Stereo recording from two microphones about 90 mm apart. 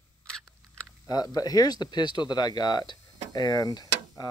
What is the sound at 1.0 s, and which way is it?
Speech, 45° left (ahead or behind).